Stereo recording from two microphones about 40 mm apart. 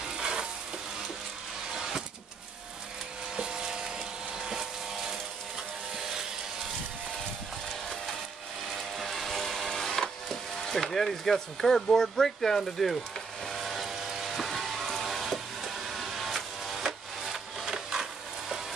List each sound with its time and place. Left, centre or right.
0.0 s stir: right
1.7 s vehicle: centre
3.3 s vacuum cleaner: centre
5.9 s vehicle: centre
8.9 s vehicle: centre
9.7 s wood: centre
11.3 s speech: centre
13.5 s a sound: centre